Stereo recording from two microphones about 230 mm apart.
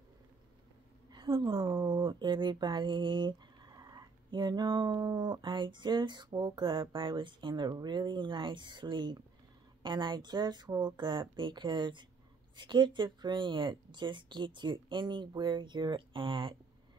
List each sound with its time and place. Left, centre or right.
1.1 s speech: centre